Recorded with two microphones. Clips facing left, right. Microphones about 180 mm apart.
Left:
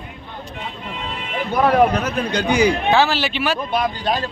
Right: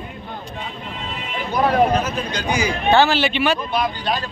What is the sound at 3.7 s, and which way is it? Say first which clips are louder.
Speech: left 1 dB; 45° left (ahead or behind).